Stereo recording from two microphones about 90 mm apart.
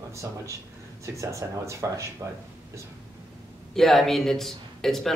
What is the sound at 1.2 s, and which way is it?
Speech, 35° right (ahead or behind).